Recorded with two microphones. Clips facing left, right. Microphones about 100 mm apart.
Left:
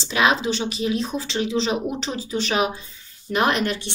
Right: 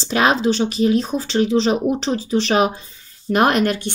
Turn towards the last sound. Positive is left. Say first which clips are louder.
# right 5 dB
turn(degrees=-45)  # may be behind; listen again after turning